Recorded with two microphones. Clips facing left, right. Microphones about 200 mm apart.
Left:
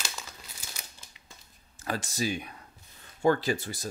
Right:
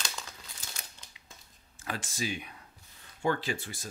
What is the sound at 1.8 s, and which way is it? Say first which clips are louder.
Speech: left 5 dB; 40° left (ahead or behind).